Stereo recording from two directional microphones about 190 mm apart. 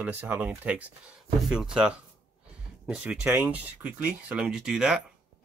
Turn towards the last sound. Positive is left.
turn(degrees=-5)  # may be behind; listen again after turning